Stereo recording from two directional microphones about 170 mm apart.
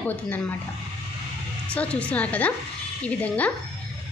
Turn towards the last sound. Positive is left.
turn(degrees=10)  # may be behind; listen again after turning